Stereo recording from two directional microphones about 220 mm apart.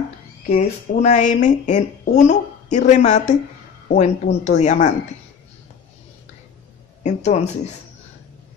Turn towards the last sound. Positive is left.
turn(degrees=30)  # may be behind; listen again after turning